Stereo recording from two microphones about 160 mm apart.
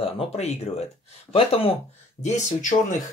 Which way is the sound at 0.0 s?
40° left (ahead or behind).